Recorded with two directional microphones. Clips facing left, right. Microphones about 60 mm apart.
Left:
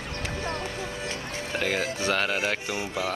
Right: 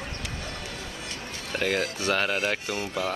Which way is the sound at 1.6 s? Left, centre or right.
Left.